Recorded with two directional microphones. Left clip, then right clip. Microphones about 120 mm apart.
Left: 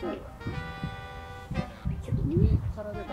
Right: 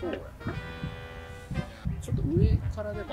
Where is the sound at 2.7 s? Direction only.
Centre (ahead or behind).